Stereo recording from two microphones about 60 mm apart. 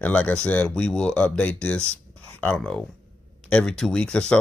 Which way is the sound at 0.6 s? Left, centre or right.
Centre.